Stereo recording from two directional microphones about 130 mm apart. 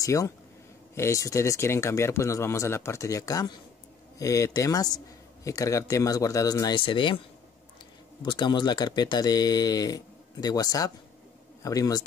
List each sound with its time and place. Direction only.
0.0 s a man's voice: 25° left (ahead or behind)
8.2 s a man's voice: 35° left (ahead or behind)